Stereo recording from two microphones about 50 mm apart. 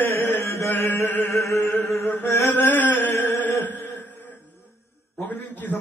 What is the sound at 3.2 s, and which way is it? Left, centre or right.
Music, left.